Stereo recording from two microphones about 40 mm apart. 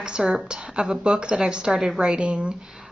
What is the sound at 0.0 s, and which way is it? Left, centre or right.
A woman's voice, right.